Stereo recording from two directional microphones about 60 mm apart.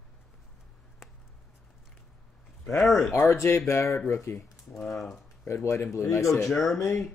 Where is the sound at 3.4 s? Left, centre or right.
Left.